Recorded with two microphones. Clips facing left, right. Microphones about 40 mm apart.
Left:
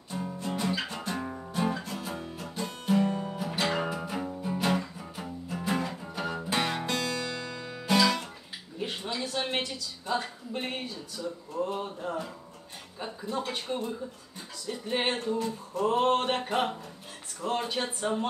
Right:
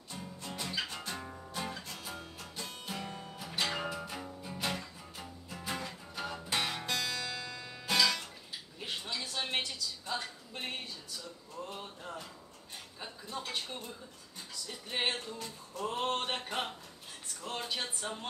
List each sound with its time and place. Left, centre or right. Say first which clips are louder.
0.4 s guitar: left 6 dB; centre
1.5 s music: left 10 dB; centre
8.7 s a sound: left 6 dB; centre
9.6 s music: left 3 dB; centre
11.7 s speech: left 10 dB; centre
13.0 s music: left 9 dB; centre